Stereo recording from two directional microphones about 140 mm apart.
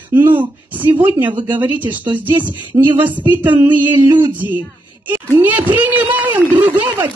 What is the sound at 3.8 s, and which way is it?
Speech, 15° right (ahead or behind).